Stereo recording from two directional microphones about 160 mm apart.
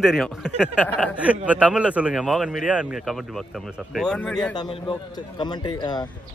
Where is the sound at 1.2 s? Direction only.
10° right (ahead or behind).